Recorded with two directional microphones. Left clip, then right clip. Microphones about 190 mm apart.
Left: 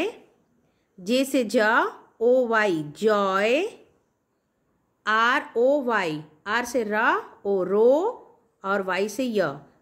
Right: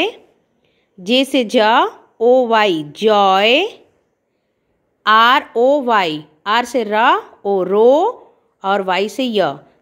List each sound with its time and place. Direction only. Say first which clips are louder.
1.0 s a woman's voice: right 8 dB; 15° right (ahead or behind)
5.0 s a woman's voice: right 11 dB; 20° right (ahead or behind)